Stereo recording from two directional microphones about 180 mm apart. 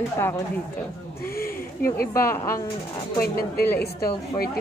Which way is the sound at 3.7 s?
60° left (ahead or behind).